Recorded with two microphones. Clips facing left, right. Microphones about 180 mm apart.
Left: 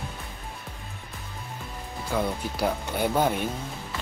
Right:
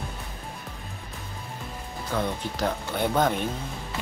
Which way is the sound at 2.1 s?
10° left (ahead or behind).